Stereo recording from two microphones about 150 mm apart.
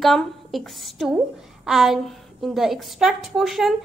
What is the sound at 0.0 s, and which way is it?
A woman's voice, centre (ahead or behind).